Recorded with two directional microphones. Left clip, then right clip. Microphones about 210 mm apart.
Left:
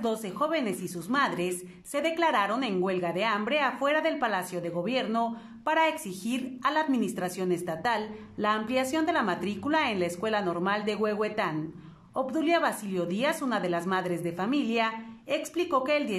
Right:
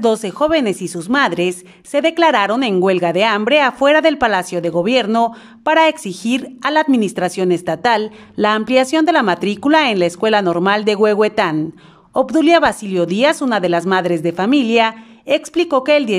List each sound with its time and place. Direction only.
0.0 s a woman's voice: 45° right (ahead or behind)